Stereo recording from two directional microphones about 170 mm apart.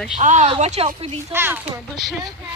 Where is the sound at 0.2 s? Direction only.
45° right (ahead or behind).